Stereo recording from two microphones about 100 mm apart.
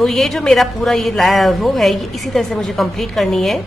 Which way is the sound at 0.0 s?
Centre (ahead or behind).